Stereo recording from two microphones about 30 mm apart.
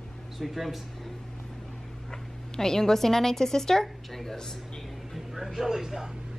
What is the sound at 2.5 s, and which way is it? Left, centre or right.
A woman's voice, centre.